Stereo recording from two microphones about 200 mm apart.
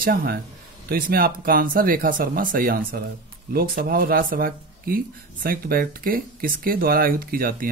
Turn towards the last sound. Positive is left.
turn(degrees=-45)  # may be behind; listen again after turning